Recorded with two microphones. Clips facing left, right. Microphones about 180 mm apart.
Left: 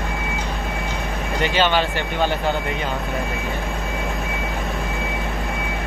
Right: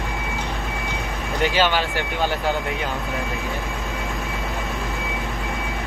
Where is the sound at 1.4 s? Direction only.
5° right (ahead or behind).